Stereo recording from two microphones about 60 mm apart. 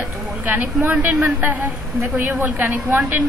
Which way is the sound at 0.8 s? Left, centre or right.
Right.